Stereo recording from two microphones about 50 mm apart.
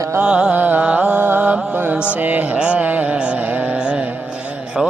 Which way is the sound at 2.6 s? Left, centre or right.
Right.